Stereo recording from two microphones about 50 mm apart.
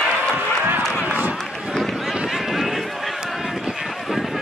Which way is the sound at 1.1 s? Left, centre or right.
Right.